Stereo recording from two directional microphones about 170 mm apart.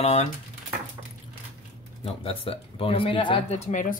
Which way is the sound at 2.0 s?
35° left (ahead or behind).